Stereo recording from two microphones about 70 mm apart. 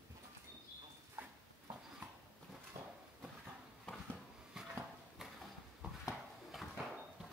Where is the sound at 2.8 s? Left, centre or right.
Right.